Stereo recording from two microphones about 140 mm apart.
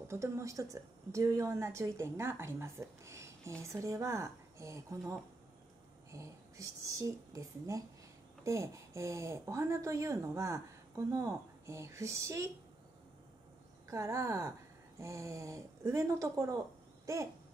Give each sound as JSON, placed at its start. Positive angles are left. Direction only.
{"t": 0.1, "sound": "a woman's voice", "side_deg": -20}
{"t": 6.1, "sound": "a woman's voice", "side_deg": -20}
{"t": 13.8, "sound": "a woman's voice", "side_deg": -20}
{"t": 17.0, "sound": "a sound", "side_deg": -20}